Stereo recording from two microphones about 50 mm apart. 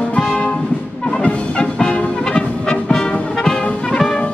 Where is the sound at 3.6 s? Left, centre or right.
Centre.